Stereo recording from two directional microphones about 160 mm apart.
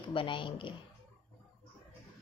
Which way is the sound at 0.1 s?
30° left (ahead or behind).